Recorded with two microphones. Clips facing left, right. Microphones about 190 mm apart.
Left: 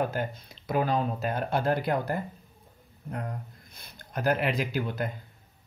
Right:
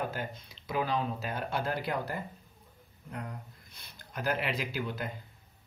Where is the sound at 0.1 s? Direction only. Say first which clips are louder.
Left 6 dB; 45° left (ahead or behind).